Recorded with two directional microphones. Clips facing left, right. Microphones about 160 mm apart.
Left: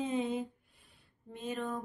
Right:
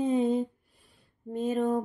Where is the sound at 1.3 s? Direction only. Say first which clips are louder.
Right 11 dB; 40° right (ahead or behind).